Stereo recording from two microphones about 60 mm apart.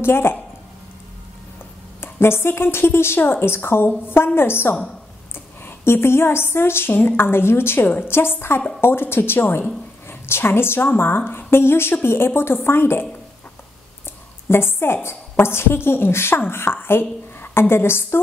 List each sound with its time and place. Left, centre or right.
0.0 s a woman's voice: left
2.0 s a woman's voice: left
14.5 s a woman's voice: left